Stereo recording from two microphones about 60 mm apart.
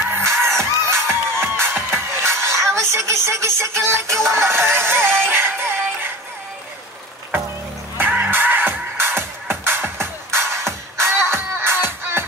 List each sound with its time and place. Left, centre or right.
0.1 s music: right
8.3 s music: right